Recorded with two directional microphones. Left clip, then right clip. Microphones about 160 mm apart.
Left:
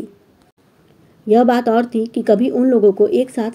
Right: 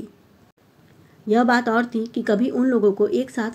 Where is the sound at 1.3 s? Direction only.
25° left (ahead or behind).